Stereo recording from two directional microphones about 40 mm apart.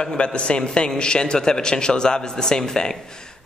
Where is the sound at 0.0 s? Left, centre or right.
Left.